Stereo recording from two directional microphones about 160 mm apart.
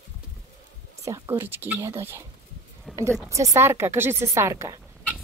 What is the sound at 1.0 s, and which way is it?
A woman's voice, 15° right (ahead or behind).